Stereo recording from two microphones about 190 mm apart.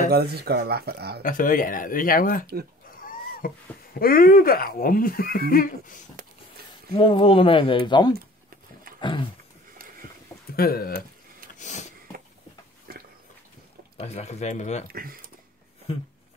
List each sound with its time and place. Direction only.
0.1 s speech: 55° right (ahead or behind)
1.2 s speech: 45° left (ahead or behind)
7.0 s speech: 25° left (ahead or behind)
10.5 s speech: 50° left (ahead or behind)
11.5 s sniff: 40° left (ahead or behind)
12.9 s a sound: 50° right (ahead or behind)
13.9 s speech: 35° left (ahead or behind)
14.9 s speech: 50° right (ahead or behind)